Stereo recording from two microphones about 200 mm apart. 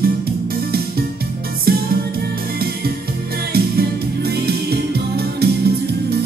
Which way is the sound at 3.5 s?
50° right (ahead or behind).